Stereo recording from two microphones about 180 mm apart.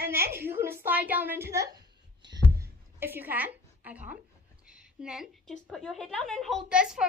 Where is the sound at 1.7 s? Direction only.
20° right (ahead or behind).